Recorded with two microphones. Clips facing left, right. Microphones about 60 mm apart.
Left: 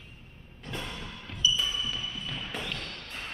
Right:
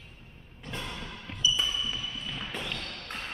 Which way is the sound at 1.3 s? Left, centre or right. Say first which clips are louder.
Right 1 dB; right.